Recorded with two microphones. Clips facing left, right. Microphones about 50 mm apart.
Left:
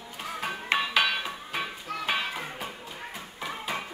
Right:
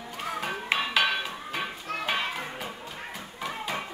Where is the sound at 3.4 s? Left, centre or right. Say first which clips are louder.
Right 1 dB; centre.